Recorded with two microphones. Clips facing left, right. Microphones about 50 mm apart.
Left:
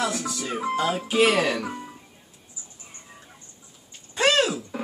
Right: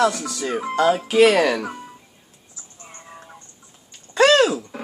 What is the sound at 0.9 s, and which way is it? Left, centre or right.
Speech, right.